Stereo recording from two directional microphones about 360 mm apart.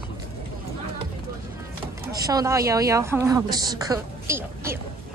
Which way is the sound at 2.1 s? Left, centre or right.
Centre.